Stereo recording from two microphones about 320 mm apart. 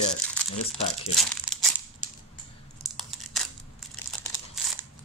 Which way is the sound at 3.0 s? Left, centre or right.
Centre.